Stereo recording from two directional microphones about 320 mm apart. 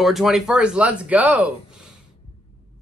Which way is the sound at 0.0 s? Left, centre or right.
Centre.